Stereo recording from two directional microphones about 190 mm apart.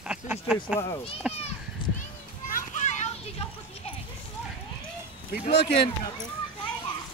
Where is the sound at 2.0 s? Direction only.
40° left (ahead or behind).